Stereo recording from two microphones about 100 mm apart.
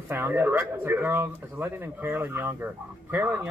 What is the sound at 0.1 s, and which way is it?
Speech, 20° right (ahead or behind).